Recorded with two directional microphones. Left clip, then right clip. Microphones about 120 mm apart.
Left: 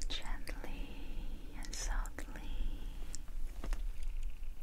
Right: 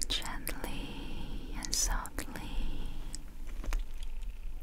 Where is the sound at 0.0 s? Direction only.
55° right (ahead or behind).